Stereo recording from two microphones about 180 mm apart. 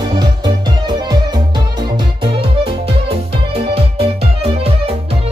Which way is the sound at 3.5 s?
30° right (ahead or behind).